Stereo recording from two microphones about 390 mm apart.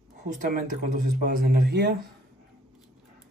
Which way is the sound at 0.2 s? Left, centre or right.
Right.